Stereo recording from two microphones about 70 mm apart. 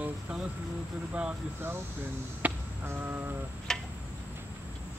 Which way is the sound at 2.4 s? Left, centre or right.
Right.